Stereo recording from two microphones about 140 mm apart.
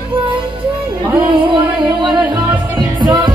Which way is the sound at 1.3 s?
35° right (ahead or behind).